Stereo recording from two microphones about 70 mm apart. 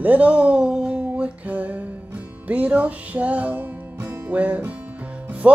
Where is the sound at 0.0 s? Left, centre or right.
Right.